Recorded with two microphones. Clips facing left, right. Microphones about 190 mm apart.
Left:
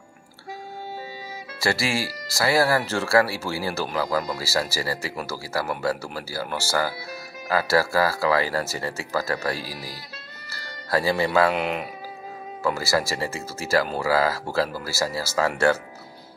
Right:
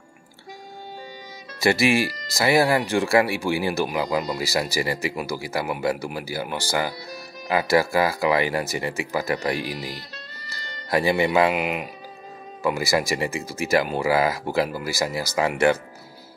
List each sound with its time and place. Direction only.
1.6 s speech: 20° right (ahead or behind)
11.5 s speech: 5° right (ahead or behind)